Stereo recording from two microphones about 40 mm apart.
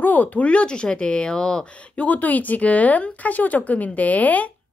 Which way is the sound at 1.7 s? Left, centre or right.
Left.